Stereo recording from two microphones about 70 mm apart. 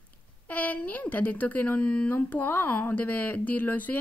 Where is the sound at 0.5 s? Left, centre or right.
Left.